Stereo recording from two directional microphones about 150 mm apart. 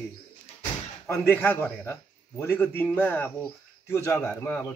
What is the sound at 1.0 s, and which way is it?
Speech, 15° left (ahead or behind).